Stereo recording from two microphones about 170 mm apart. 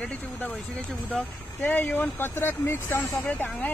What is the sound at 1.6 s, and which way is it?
Speech, 10° left (ahead or behind).